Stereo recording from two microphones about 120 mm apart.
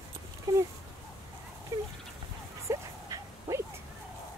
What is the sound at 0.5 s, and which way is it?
Speech, 30° right (ahead or behind).